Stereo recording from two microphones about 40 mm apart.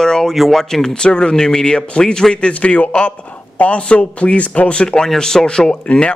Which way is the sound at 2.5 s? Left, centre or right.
Left.